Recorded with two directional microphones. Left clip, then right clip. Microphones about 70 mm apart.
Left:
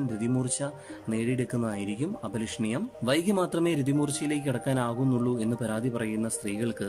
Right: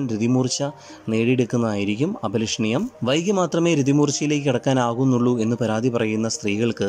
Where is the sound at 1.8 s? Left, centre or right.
Right.